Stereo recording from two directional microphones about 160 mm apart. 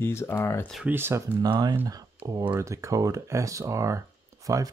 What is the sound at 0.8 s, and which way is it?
Speech, 15° right (ahead or behind).